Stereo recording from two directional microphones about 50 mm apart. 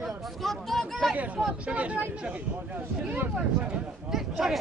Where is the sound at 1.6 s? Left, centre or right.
Right.